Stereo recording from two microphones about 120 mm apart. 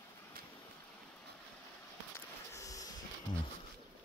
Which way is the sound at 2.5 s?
30° left (ahead or behind).